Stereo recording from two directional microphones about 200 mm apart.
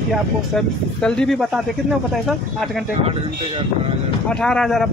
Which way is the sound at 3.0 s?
25° right (ahead or behind).